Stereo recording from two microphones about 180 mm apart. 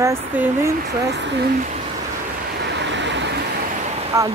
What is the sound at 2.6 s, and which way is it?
Vehicle, 75° right (ahead or behind).